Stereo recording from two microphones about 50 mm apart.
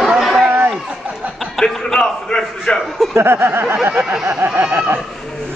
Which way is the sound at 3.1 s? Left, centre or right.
Right.